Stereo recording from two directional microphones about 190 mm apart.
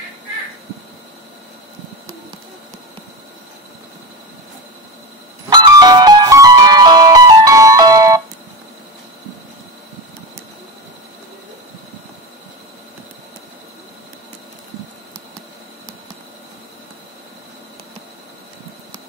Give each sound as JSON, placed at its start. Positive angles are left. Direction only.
{"t": 5.5, "sound": "music", "side_deg": -20}